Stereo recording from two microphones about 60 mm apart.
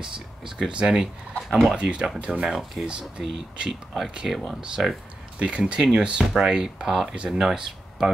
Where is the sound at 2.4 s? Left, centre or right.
Centre.